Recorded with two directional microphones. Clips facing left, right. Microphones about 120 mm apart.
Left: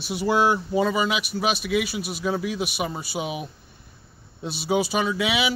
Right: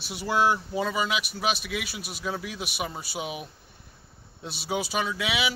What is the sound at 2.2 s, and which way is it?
A man's voice, 20° left (ahead or behind).